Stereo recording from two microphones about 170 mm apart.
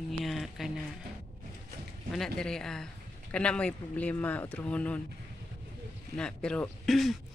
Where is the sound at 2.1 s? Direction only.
5° left (ahead or behind).